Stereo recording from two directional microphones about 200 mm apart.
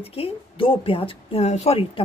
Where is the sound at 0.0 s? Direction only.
30° left (ahead or behind).